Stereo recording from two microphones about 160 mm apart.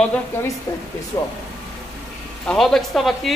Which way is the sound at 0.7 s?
15° left (ahead or behind).